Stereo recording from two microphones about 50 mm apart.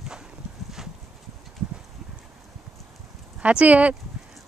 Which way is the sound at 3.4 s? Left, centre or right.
Right.